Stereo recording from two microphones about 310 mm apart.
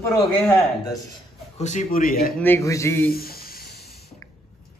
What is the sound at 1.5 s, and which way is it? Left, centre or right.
Speech, left.